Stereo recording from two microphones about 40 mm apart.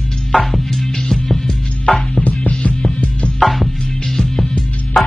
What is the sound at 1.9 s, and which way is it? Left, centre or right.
Music, left.